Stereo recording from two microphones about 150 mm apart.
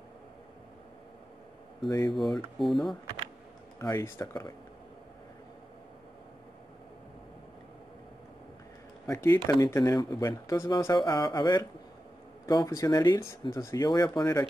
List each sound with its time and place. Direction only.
1.9 s speech: 25° left (ahead or behind)
2.1 s speech: centre (ahead or behind)
3.8 s speech: 20° left (ahead or behind)
9.0 s speech: 20° left (ahead or behind)